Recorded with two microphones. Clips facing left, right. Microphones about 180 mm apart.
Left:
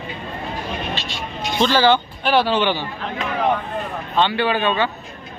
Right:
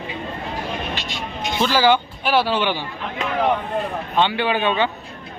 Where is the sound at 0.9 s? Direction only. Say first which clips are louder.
Even; 15° right (ahead or behind).